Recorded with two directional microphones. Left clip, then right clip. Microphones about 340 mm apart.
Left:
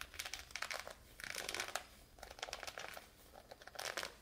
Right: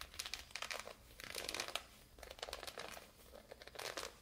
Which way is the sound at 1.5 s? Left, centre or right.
Centre.